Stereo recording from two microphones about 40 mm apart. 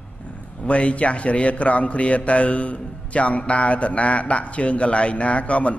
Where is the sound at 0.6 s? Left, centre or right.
Left.